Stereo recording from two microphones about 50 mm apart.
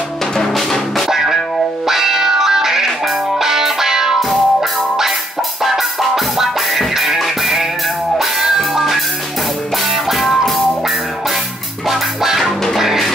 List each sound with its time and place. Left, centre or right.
0.4 s music: centre
11.9 s music: centre